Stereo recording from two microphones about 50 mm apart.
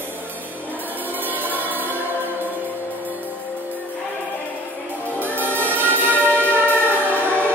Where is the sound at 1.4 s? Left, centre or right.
Right.